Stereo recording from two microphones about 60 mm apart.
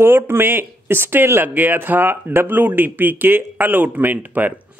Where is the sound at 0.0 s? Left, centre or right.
Right.